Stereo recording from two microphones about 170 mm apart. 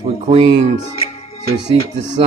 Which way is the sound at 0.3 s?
35° right (ahead or behind).